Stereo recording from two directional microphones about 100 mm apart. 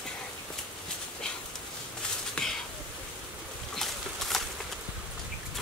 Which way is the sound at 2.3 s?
5° left (ahead or behind).